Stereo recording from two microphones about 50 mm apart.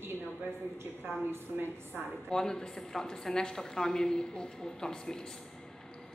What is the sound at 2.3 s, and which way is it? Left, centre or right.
A woman's voice, centre.